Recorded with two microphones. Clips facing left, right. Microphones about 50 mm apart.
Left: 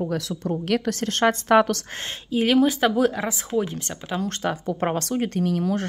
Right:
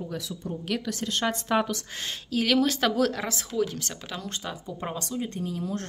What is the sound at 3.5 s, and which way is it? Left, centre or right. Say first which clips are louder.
Speech: left 2 dB; left.